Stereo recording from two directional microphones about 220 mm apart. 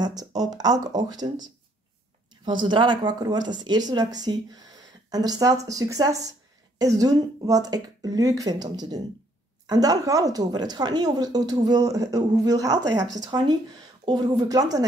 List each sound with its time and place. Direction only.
0.0 s a woman's voice: 15° right (ahead or behind)